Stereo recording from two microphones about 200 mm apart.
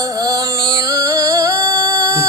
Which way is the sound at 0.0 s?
20° right (ahead or behind).